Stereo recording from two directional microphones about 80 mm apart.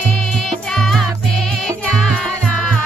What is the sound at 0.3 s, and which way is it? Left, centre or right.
Music, centre.